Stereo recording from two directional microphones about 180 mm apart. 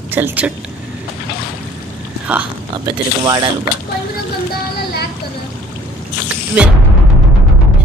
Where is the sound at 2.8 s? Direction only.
25° right (ahead or behind).